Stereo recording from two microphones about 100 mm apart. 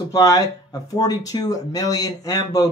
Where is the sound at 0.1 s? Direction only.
35° left (ahead or behind).